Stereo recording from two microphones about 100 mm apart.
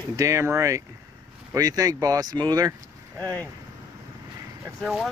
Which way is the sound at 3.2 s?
15° left (ahead or behind).